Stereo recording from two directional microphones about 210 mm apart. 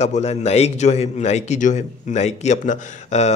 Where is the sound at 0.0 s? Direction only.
30° left (ahead or behind).